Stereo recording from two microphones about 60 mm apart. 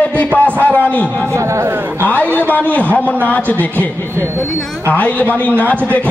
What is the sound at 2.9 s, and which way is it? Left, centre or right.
Speech, left.